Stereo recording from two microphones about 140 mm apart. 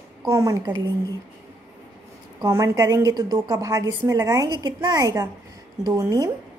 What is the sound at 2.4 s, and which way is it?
A woman's voice, 25° right (ahead or behind).